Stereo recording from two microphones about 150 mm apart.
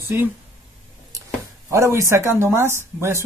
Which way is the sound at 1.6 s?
20° right (ahead or behind).